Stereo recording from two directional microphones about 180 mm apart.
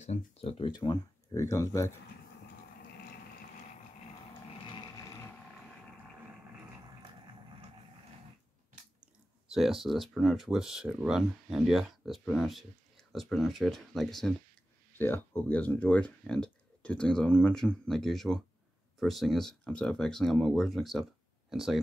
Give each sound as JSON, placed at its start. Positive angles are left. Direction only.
{"t": 0.0, "sound": "speech", "side_deg": 35}
{"t": 9.5, "sound": "speech", "side_deg": 0}